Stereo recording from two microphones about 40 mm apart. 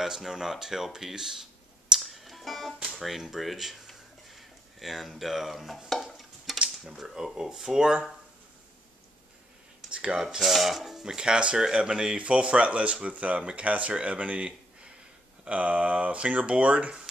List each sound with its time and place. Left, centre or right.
0.0 s speech: centre
2.0 s music: centre
2.8 s speech: centre
6.1 s stir: centre
6.8 s speech: centre
9.8 s cutlery: right
10.1 s speech: centre; by 16.9 s right